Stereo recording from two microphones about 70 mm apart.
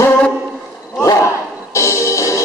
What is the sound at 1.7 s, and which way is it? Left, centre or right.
Music, left.